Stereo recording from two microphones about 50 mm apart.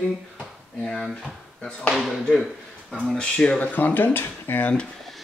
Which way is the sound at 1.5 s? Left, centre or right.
Centre.